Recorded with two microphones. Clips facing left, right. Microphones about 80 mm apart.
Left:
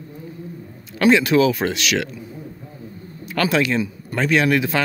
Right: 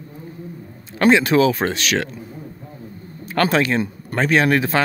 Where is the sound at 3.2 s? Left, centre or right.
Right.